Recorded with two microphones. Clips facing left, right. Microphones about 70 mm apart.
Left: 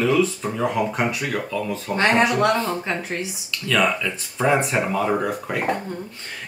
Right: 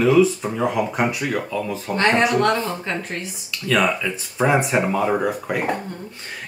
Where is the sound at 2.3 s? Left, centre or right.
Centre.